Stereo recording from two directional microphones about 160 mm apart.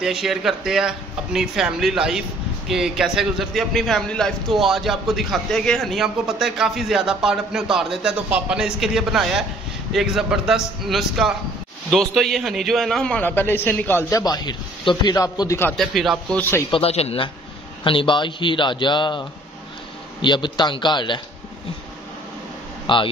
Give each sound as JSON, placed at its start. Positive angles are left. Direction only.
{"t": 0.0, "sound": "a man's voice", "side_deg": -5}
{"t": 15.7, "sound": "a man's voice", "side_deg": 0}
{"t": 16.7, "sound": "a man's voice", "side_deg": 40}
{"t": 22.9, "sound": "speech", "side_deg": 30}